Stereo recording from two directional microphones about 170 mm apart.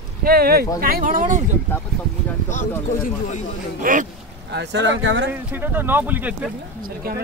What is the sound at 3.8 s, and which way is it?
Speech, 55° right (ahead or behind).